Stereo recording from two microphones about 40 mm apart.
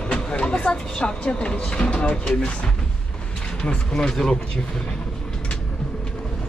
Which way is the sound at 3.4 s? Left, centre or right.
Left.